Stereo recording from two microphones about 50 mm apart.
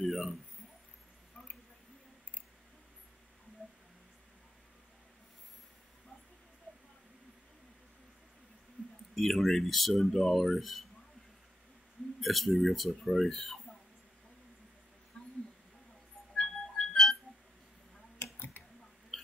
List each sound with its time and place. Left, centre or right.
0.0 s a sound: centre
9.1 s speech: centre
12.2 s speech: centre
15.2 s a sound: centre
16.3 s music: centre
18.2 s clicking: left